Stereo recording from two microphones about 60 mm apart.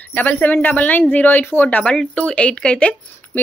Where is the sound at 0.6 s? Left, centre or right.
Left.